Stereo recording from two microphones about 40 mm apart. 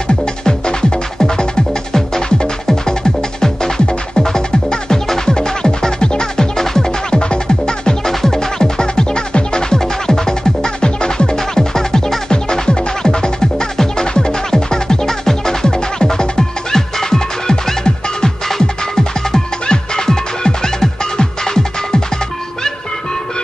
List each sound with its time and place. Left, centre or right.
0.5 s music: centre
19.3 s music: centre